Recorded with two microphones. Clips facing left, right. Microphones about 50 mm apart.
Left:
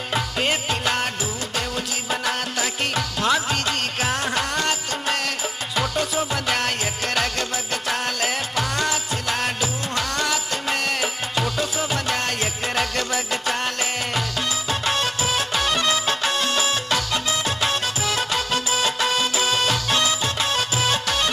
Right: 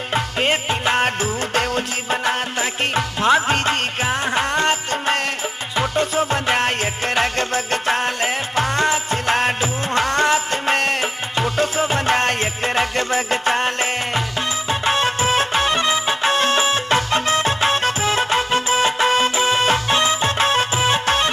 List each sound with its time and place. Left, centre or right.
0.1 s music: right
1.0 s music: right
2.0 s music: right
4.0 s music: right